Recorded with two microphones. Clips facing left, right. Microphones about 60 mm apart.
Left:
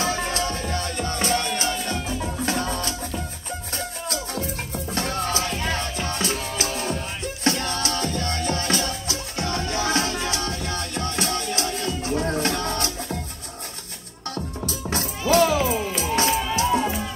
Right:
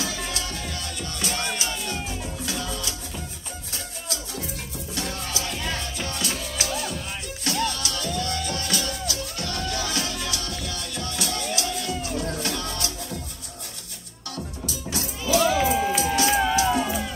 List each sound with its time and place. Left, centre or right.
0.0 s music: left
14.3 s music: left